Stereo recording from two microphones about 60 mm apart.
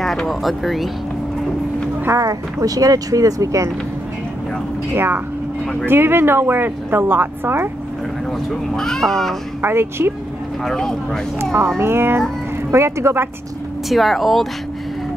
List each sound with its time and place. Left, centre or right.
0.0 s speech: centre
2.1 s speech: right
4.9 s a woman's voice: right
8.3 s speech: centre
9.6 s a woman's voice: right
10.6 s speech: centre
11.8 s a woman's voice: right
13.8 s speech: centre